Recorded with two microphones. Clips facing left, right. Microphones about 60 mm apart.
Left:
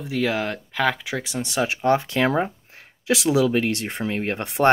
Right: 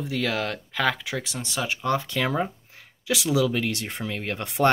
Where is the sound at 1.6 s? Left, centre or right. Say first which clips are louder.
Left 5 dB; left.